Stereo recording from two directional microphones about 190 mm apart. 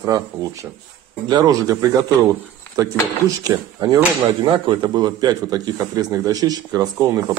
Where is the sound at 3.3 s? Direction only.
20° right (ahead or behind).